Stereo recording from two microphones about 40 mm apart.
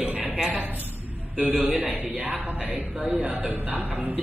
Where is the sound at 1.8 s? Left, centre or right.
Right.